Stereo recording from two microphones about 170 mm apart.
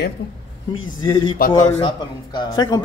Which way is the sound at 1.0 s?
25° left (ahead or behind).